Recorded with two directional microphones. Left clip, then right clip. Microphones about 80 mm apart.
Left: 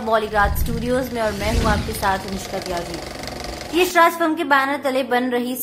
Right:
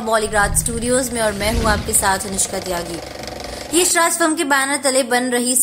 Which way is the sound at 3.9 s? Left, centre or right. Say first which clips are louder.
Left 3 dB; right.